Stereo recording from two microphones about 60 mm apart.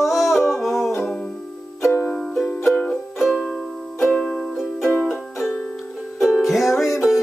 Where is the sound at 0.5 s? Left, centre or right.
Centre.